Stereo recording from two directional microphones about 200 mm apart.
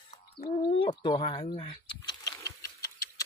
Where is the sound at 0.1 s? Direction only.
35° left (ahead or behind).